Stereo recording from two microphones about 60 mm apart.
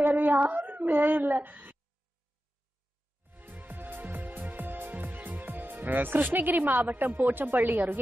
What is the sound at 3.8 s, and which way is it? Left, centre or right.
Music, right.